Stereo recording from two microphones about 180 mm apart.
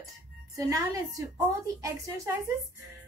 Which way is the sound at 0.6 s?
20° right (ahead or behind).